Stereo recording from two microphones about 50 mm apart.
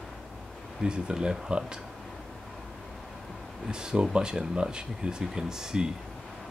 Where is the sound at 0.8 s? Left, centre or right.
Centre.